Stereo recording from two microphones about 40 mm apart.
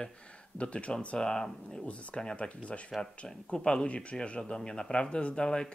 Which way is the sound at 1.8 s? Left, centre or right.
Left.